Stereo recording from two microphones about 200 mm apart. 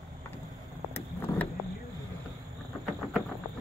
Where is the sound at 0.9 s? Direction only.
10° left (ahead or behind).